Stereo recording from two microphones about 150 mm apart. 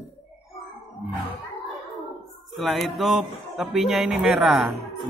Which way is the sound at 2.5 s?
Centre (ahead or behind).